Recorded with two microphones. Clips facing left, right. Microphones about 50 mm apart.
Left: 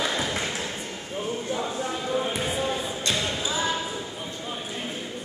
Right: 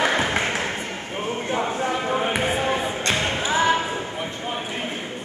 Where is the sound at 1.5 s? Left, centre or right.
Right.